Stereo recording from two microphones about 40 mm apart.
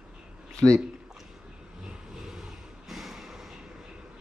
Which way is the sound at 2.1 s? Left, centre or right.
Centre.